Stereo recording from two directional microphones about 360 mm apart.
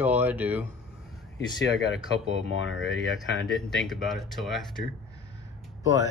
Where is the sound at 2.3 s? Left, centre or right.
Centre.